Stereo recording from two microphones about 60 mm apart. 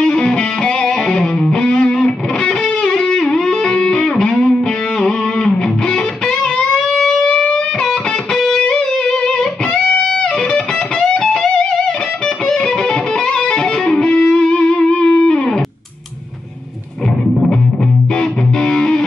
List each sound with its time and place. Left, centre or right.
0.0 s music: centre
7.2 s music: centre
10.5 s music: centre
13.3 s music: centre
18.6 s music: centre